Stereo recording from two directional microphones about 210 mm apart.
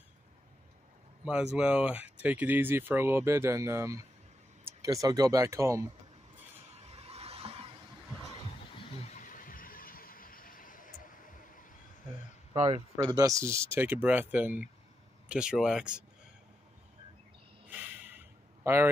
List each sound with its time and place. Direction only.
1.2 s speech: 5° right (ahead or behind)
7.0 s a sound: 30° right (ahead or behind)
9.0 s vehicle: 35° left (ahead or behind)
12.5 s speech: 25° right (ahead or behind)
12.9 s speech: 15° right (ahead or behind)
17.6 s a sound: 10° right (ahead or behind)